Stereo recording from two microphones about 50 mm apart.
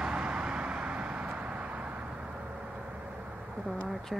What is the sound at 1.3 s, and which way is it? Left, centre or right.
Vehicle, right.